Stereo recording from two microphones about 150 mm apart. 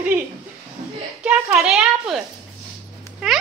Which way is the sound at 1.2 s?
5° right (ahead or behind).